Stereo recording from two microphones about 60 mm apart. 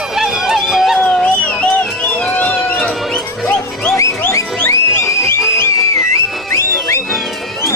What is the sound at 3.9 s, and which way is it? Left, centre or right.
Music, left.